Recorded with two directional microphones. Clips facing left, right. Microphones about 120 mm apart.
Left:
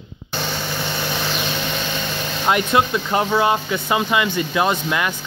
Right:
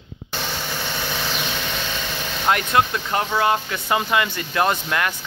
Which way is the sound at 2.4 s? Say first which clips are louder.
Left 1 dB; 15° left (ahead or behind).